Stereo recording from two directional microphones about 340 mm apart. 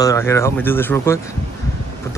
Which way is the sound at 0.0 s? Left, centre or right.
Centre.